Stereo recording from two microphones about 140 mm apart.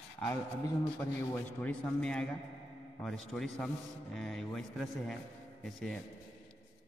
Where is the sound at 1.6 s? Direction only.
5° left (ahead or behind).